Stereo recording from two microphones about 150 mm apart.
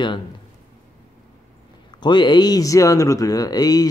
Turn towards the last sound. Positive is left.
turn(degrees=25)  # may be behind; listen again after turning